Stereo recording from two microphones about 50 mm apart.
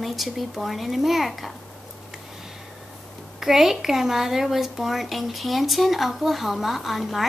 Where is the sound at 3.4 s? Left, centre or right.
Centre.